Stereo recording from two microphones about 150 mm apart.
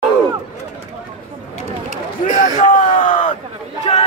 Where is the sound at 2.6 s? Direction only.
55° left (ahead or behind).